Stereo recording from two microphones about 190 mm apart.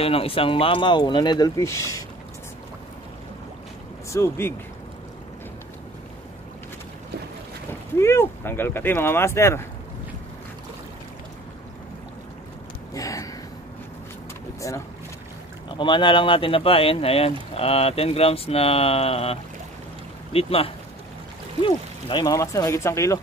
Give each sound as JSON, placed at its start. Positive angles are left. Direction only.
{"t": 0.0, "sound": "speech", "side_deg": 30}
{"t": 4.1, "sound": "speech", "side_deg": 15}
{"t": 8.0, "sound": "speech", "side_deg": 15}
{"t": 12.9, "sound": "a sound", "side_deg": 15}
{"t": 14.6, "sound": "speech", "side_deg": 15}